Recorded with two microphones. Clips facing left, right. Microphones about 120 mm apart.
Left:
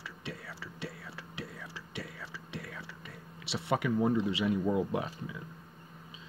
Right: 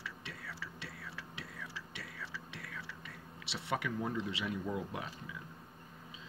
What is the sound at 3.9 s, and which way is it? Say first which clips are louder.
Speech: left 9 dB; 25° left (ahead or behind).